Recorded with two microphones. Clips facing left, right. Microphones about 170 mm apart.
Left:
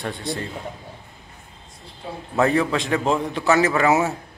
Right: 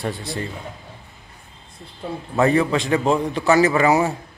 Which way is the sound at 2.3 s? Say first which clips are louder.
Right 2 dB; centre (ahead or behind).